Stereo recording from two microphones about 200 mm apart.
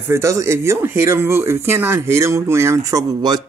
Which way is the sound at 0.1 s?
15° right (ahead or behind).